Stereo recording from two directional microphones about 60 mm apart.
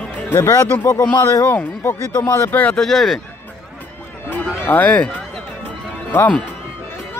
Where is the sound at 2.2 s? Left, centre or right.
Left.